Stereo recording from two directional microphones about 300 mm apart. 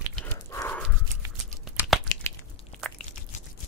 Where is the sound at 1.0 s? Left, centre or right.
Centre.